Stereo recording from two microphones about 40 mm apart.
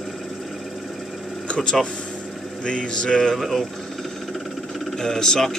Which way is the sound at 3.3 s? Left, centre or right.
Centre.